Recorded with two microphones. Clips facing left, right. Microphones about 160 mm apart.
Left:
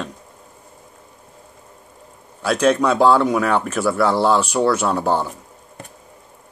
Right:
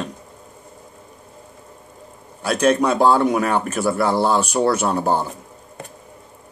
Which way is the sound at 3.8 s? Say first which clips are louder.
Left 2 dB; 15° right (ahead or behind).